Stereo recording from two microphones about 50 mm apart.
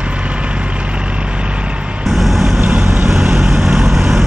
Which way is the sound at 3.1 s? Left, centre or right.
Centre.